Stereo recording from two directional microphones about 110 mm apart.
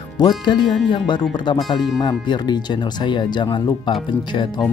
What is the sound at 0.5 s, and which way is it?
Speech, 45° left (ahead or behind).